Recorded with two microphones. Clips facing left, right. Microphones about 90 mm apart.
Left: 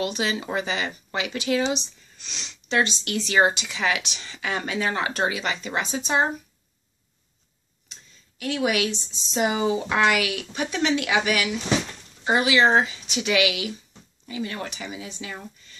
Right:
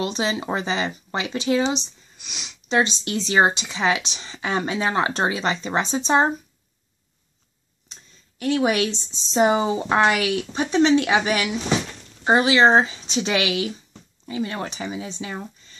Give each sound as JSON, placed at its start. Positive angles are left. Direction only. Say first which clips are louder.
{"t": 0.0, "sound": "speech", "louder": "right 2 dB", "side_deg": -25}
{"t": 2.1, "sound": "speech", "louder": "right 1 dB", "side_deg": -10}
{"t": 7.9, "sound": "speech", "louder": "right 1 dB", "side_deg": -35}